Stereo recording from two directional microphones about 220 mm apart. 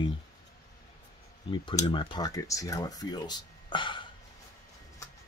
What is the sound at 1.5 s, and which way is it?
Speech, 20° left (ahead or behind).